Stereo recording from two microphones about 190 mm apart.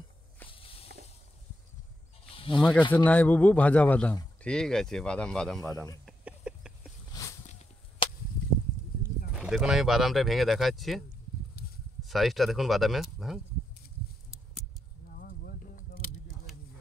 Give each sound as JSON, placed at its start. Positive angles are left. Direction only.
{"t": 0.5, "sound": "walk", "side_deg": 30}
{"t": 2.2, "sound": "snake", "side_deg": 30}
{"t": 3.1, "sound": "a man's voice", "side_deg": 10}
{"t": 5.7, "sound": "a man's voice", "side_deg": 20}
{"t": 6.0, "sound": "a sound", "side_deg": -5}
{"t": 7.1, "sound": "a sound", "side_deg": 15}
{"t": 8.0, "sound": "chop", "side_deg": 25}
{"t": 9.3, "sound": "speech", "side_deg": -5}
{"t": 15.1, "sound": "a sound", "side_deg": 50}